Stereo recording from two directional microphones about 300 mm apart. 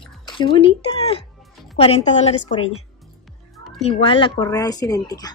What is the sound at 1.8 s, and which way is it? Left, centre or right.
Speech, left.